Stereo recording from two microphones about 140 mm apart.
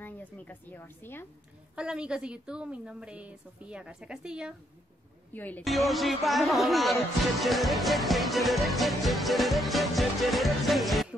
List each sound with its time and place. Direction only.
0.0 s a woman's voice: 15° left (ahead or behind)
1.8 s a woman's voice: 5° right (ahead or behind)
5.3 s speech: 10° left (ahead or behind)
5.6 s music: centre (ahead or behind)